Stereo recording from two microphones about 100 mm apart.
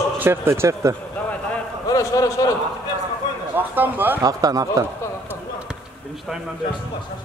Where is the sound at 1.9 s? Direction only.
35° left (ahead or behind).